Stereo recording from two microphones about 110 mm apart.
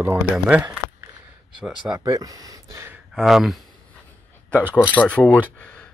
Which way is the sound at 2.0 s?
35° right (ahead or behind).